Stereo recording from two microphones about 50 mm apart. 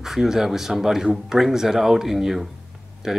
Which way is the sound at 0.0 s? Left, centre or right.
Centre.